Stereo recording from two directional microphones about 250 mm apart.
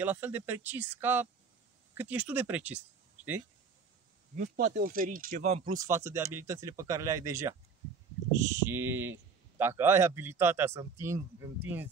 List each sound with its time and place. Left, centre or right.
0.0 s speech: centre
4.4 s speech: right
5.7 s speech: centre